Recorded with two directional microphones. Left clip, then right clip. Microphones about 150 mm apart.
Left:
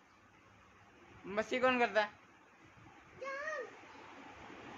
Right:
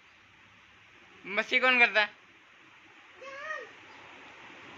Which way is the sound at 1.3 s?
Centre (ahead or behind).